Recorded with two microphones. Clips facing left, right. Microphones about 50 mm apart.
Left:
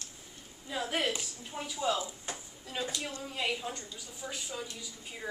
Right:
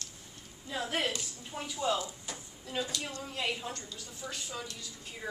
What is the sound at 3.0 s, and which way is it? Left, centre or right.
A woman's voice, centre.